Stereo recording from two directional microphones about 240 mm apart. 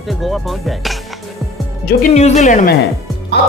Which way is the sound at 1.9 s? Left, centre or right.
Left.